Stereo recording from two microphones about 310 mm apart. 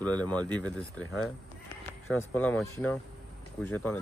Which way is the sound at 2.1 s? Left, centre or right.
Centre.